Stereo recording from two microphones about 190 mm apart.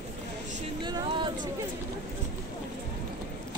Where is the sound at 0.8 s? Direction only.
25° right (ahead or behind).